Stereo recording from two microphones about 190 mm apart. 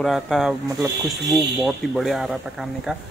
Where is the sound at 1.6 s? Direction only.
Centre (ahead or behind).